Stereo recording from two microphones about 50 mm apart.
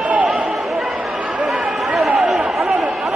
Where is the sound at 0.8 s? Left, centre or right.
Centre.